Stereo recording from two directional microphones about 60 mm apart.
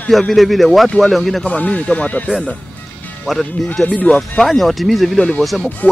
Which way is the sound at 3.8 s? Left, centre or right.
Left.